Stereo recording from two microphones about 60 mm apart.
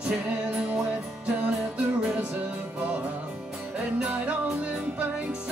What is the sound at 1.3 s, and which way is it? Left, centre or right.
Music, right.